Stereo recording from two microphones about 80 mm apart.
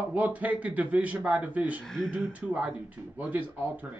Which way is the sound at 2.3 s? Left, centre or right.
Centre.